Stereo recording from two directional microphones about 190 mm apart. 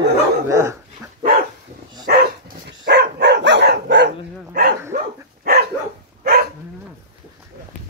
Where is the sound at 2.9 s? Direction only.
60° right (ahead or behind).